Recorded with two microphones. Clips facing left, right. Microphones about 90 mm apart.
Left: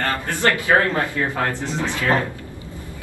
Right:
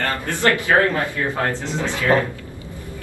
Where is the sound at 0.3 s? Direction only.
20° left (ahead or behind).